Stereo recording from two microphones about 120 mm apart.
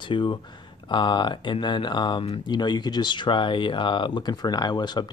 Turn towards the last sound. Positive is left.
turn(degrees=35)  # may be behind; listen again after turning